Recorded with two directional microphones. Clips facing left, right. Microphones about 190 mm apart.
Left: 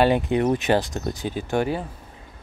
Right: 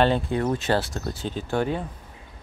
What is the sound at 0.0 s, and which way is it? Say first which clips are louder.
Speech: left 3 dB; 15° left (ahead or behind).